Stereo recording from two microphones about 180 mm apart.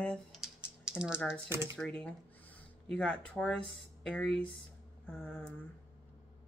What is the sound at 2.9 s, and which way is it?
Speech, 5° left (ahead or behind).